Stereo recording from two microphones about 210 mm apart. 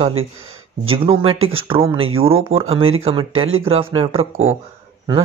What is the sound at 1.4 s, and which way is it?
Speech, 75° right (ahead or behind).